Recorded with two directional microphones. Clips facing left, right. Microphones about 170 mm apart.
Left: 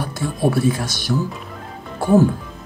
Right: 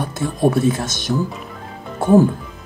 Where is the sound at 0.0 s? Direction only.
20° right (ahead or behind).